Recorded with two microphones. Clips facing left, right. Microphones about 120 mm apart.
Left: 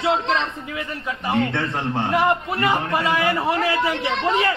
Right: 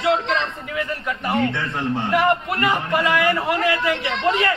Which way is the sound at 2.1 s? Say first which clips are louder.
Right 1 dB; 25° left (ahead or behind).